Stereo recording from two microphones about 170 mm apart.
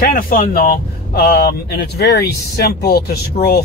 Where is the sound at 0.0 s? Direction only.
55° left (ahead or behind).